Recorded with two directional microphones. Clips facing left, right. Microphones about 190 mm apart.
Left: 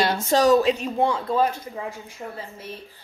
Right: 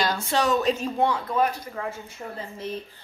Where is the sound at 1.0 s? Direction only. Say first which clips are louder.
Left 2 dB; 25° left (ahead or behind).